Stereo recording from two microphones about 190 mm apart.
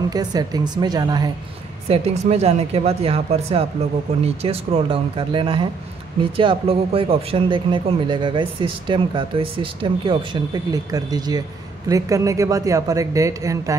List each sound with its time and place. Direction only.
0.1 s a man's voice: 20° right (ahead or behind)
1.9 s a man's voice: 35° right (ahead or behind); by 13.7 s 15° right (ahead or behind)